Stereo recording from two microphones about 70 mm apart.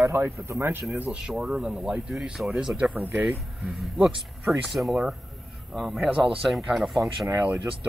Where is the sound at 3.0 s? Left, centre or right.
Right.